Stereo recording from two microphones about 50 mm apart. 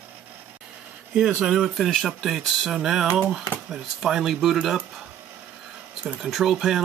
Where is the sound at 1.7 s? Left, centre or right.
Centre.